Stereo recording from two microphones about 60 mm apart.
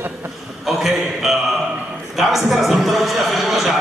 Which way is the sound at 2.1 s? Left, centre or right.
Centre.